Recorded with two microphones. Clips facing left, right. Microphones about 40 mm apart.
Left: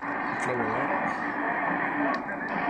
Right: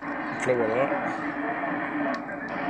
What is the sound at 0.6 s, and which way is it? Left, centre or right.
Speech, right.